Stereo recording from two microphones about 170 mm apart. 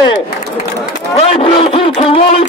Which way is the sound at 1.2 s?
35° left (ahead or behind).